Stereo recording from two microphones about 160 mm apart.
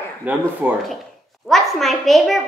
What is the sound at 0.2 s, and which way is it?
Speech, 10° right (ahead or behind).